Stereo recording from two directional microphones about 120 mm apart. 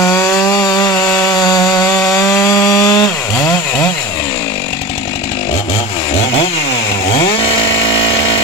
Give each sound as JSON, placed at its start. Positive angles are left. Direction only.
{"t": 0.0, "sound": "chainsaw", "side_deg": 25}
{"t": 1.2, "sound": "sawing", "side_deg": 30}
{"t": 7.1, "sound": "chainsaw", "side_deg": 50}